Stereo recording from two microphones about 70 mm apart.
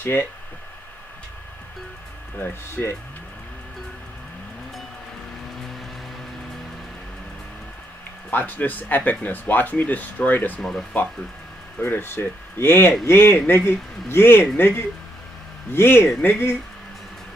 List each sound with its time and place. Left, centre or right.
0.0 s speech: left
2.3 s speech: left
8.3 s speech: left
10.6 s speech: centre
11.8 s speech: left
15.7 s speech: left